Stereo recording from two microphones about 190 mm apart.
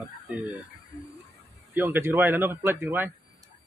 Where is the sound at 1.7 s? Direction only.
10° right (ahead or behind).